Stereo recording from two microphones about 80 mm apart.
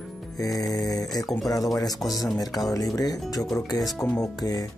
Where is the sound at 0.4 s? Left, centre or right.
Left.